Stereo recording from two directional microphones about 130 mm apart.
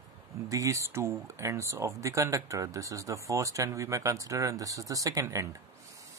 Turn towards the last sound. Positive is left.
turn(degrees=-25)  # may be behind; listen again after turning